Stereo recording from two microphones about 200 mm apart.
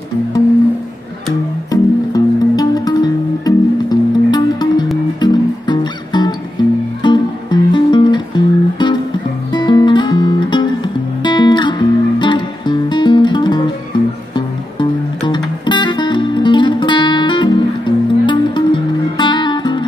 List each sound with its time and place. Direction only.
1.7 s music: 20° left (ahead or behind)